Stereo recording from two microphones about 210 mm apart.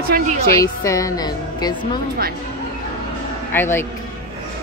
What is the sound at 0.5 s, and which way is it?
A woman's voice, 15° left (ahead or behind).